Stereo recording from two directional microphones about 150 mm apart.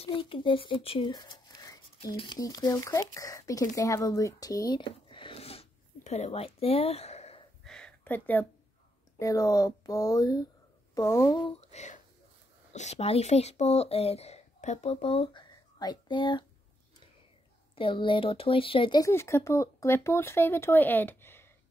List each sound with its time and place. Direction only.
0.0 s speech: 35° left (ahead or behind)
7.6 s a sound: 5° left (ahead or behind)
9.2 s speech: 20° left (ahead or behind)
11.6 s speech: 50° left (ahead or behind); by 16.4 s 30° left (ahead or behind)
17.7 s speech: 35° left (ahead or behind)
19.0 s speech: 20° left (ahead or behind)